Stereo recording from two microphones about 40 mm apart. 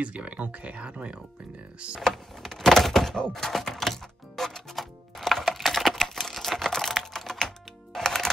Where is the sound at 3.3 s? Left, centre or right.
Centre.